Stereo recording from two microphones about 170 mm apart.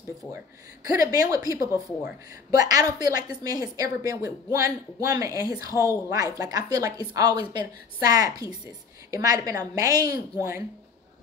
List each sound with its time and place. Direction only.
0.8 s a woman's voice: 20° right (ahead or behind)